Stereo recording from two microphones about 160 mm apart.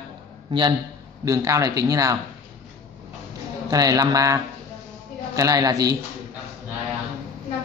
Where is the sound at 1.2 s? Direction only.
20° right (ahead or behind).